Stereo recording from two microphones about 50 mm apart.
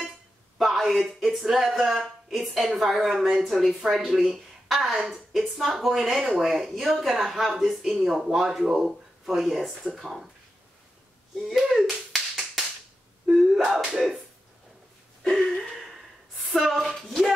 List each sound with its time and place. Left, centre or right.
0.6 s speech: centre
4.6 s a sound: centre
4.9 s a woman's voice: centre
5.3 s speech: centre
11.4 s clapping: centre
13.3 s a sound: centre
13.7 s speech: centre
15.4 s a sound: centre
16.5 s speech: centre